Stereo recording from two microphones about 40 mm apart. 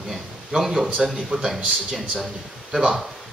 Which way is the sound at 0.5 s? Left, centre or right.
Centre.